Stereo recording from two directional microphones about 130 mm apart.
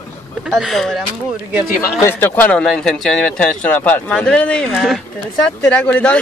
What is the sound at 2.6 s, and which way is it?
A man's voice, 5° left (ahead or behind).